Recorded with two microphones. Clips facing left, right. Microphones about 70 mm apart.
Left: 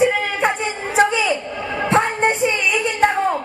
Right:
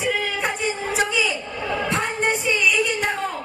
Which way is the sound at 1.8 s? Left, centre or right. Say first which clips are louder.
Left 8 dB; left.